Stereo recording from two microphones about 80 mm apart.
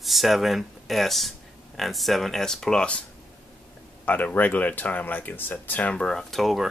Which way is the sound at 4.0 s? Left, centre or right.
Left.